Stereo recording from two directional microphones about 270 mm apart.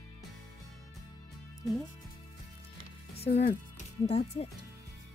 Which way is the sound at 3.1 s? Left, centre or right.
Left.